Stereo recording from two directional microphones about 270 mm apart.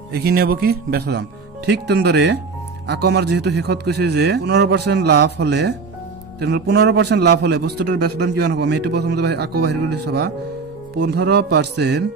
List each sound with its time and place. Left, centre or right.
0.1 s a man's voice: right